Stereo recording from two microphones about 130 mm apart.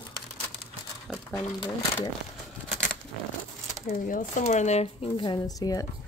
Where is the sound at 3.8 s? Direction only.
85° left; by 5.1 s 60° left (ahead or behind).